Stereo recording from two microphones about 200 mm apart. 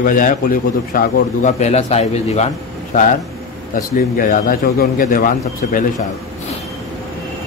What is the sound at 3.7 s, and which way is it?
A man's voice, 45° left (ahead or behind).